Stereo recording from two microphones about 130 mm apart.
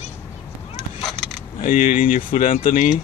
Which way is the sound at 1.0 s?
Centre (ahead or behind).